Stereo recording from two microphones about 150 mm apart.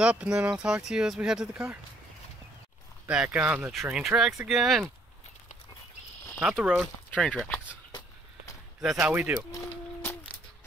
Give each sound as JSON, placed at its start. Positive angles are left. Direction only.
{"t": 0.0, "sound": "speech", "side_deg": -5}
{"t": 3.1, "sound": "speech", "side_deg": -5}
{"t": 6.4, "sound": "speech", "side_deg": -5}
{"t": 7.1, "sound": "speech", "side_deg": 5}
{"t": 8.8, "sound": "speech", "side_deg": 0}
{"t": 9.1, "sound": "speech", "side_deg": -15}
{"t": 10.0, "sound": "a sound", "side_deg": 15}